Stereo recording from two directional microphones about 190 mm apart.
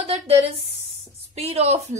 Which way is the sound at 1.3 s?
35° right (ahead or behind).